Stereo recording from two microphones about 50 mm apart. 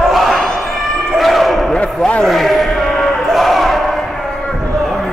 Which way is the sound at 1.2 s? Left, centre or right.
Centre.